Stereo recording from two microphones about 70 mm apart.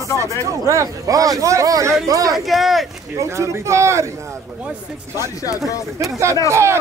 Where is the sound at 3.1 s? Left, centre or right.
Right.